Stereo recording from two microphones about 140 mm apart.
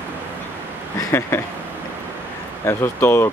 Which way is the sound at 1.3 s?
20° left (ahead or behind).